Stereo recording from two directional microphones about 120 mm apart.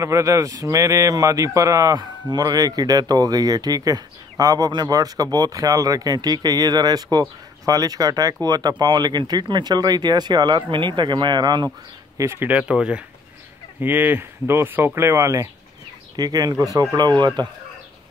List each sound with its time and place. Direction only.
0.0 s speech: 25° right (ahead or behind)
12.2 s speech: 20° right (ahead or behind); by 17.3 s 35° right (ahead or behind)